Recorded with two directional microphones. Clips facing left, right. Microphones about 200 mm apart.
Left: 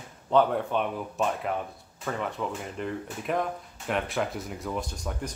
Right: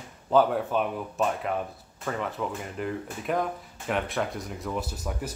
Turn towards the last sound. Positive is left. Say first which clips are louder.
# right 1 dB
turn(degrees=-5)  # may be behind; listen again after turning